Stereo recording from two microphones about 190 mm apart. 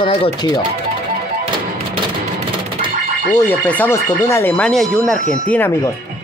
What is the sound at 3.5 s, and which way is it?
Speech, 10° left (ahead or behind).